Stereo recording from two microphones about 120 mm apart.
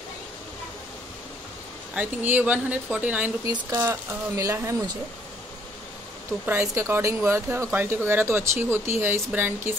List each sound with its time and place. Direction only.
2.0 s speech: 10° right (ahead or behind)
3.4 s speech: 25° right (ahead or behind)
6.4 s speech: 20° right (ahead or behind)